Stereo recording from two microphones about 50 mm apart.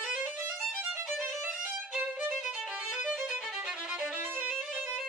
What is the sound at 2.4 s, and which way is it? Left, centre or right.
Violin, centre.